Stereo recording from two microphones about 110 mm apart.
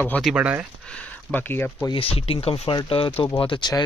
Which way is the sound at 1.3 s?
20° left (ahead or behind).